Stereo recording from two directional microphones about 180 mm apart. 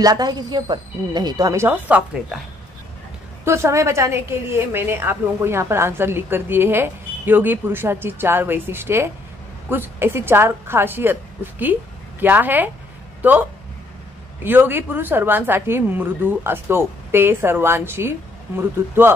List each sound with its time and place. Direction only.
0.0 s speech: 25° right (ahead or behind)
3.4 s a woman's voice: 15° right (ahead or behind)